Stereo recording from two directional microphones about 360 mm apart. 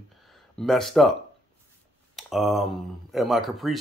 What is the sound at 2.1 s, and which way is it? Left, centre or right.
Speech, centre.